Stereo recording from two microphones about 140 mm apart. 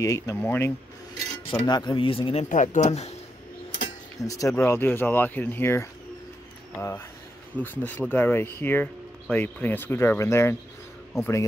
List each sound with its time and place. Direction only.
0.0 s speech: 20° left (ahead or behind)
1.5 s speech: 30° left (ahead or behind)
2.5 s speech: 60° left (ahead or behind)
4.2 s speech: 25° left (ahead or behind)